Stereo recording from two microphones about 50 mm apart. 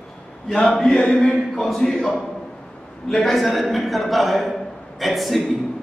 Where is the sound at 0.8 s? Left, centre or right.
Left.